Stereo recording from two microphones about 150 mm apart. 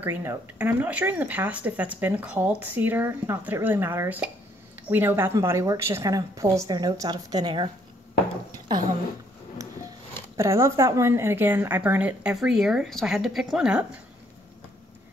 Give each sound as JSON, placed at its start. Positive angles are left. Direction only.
{"t": 0.0, "sound": "a woman's voice", "side_deg": -15}
{"t": 10.3, "sound": "speech", "side_deg": -20}